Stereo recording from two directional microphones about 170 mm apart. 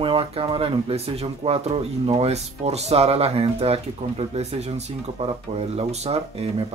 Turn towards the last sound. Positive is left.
turn(degrees=-35)  # may be behind; listen again after turning